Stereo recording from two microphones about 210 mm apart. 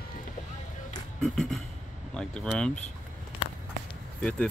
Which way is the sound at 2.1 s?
5° left (ahead or behind).